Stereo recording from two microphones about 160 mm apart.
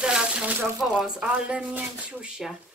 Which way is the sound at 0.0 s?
5° right (ahead or behind).